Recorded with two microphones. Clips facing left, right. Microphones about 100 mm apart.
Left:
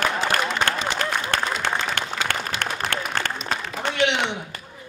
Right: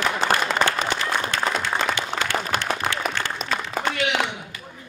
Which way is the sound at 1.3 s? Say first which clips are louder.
Even; 55° left (ahead or behind).